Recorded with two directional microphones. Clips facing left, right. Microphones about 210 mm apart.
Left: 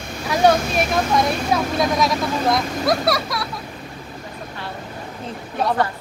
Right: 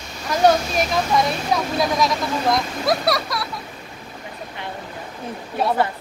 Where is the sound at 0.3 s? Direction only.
Centre (ahead or behind).